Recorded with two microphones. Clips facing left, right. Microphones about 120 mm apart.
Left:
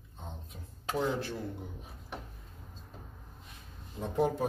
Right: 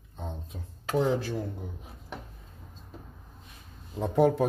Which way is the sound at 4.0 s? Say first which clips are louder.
Right 6 dB; 90° right.